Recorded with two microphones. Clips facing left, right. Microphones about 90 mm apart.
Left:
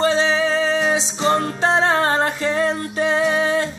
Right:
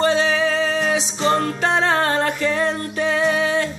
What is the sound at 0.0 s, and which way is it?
Music, 25° left (ahead or behind).